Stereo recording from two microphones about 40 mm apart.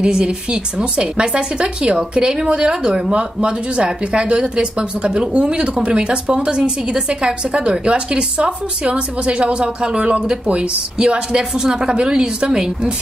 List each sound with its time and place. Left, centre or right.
0.0 s a woman's voice: right